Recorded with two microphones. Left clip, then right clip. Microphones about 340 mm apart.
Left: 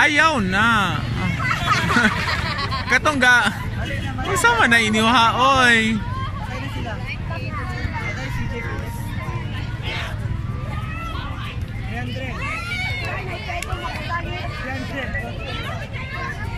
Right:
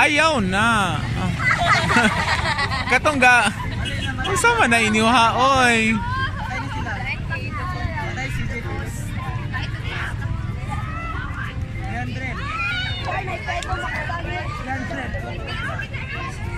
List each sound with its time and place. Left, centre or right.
0.0 s vehicle: centre
2.2 s snicker: right
2.9 s speech: centre